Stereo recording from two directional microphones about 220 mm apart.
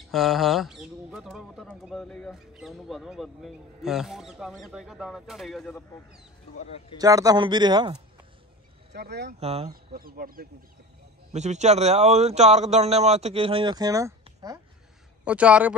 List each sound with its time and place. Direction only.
0.1 s speech: centre (ahead or behind)
6.6 s speech: 25° left (ahead or behind)
7.0 s a man's voice: 15° right (ahead or behind)
8.9 s speech: 50° right (ahead or behind)
9.4 s a man's voice: 25° right (ahead or behind)
9.9 s speech: 40° right (ahead or behind)
11.3 s a man's voice: 30° right (ahead or behind); by 14.1 s 15° right (ahead or behind)
14.2 s a sound: 15° right (ahead or behind)
15.2 s speech: 5° right (ahead or behind)